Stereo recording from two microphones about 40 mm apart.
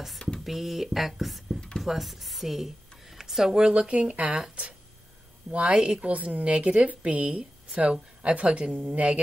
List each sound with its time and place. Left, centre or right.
0.4 s speech: centre
3.5 s speech: right
5.5 s speech: right
6.0 s a woman's voice: right